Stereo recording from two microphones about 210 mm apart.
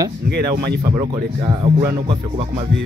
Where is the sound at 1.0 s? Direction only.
20° right (ahead or behind).